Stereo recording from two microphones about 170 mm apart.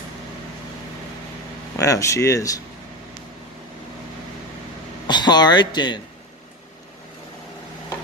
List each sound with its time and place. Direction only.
1.8 s speech: 20° left (ahead or behind)
5.0 s speech: 25° left (ahead or behind)